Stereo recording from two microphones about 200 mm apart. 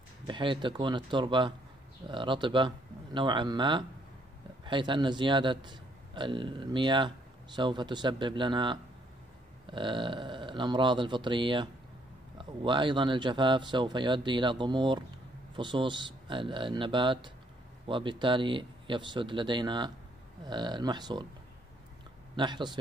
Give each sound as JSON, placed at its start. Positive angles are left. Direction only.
{"t": 0.3, "sound": "a man's voice", "side_deg": -25}
{"t": 22.3, "sound": "a man's voice", "side_deg": -25}